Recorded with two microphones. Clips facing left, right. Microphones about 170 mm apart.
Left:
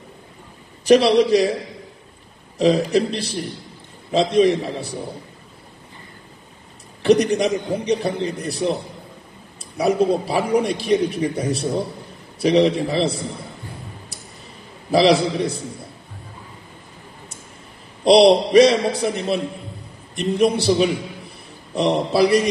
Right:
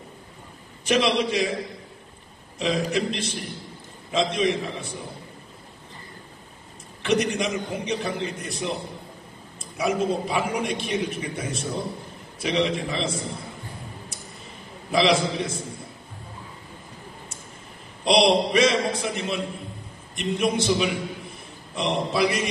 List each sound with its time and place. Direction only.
0.8 s speech: 35° left (ahead or behind)
2.6 s speech: 35° left (ahead or behind)
7.0 s speech: 35° left (ahead or behind)
14.9 s speech: 35° left (ahead or behind)
18.0 s speech: 35° left (ahead or behind)